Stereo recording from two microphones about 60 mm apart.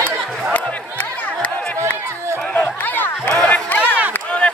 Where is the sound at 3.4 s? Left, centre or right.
Left.